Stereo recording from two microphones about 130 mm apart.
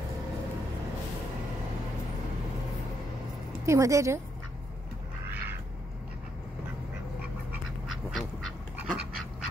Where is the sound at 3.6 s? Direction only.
25° right (ahead or behind).